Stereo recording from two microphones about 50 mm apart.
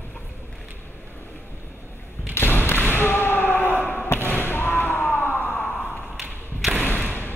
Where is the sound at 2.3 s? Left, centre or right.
Left.